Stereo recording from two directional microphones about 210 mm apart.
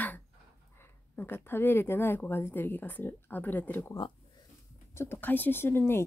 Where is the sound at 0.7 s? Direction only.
10° left (ahead or behind).